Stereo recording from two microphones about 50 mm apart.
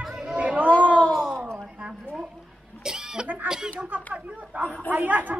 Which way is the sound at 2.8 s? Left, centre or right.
Centre.